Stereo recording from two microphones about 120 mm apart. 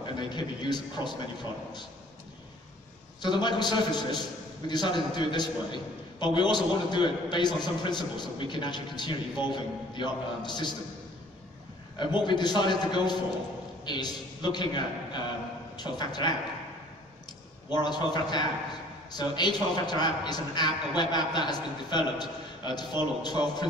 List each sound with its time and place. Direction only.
0.0 s a man's voice: 40° left (ahead or behind)
3.2 s a man's voice: 40° left (ahead or behind)
12.0 s a man's voice: 40° left (ahead or behind)
17.8 s a man's voice: 35° left (ahead or behind)